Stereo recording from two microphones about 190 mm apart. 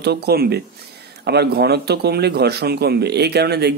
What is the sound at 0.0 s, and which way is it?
Speech, 60° right (ahead or behind).